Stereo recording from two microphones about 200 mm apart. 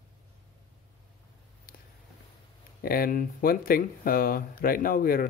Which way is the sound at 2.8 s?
45° left (ahead or behind).